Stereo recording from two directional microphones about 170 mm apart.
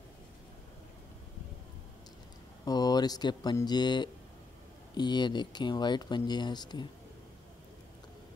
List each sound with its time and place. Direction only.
2.6 s speech: 25° left (ahead or behind)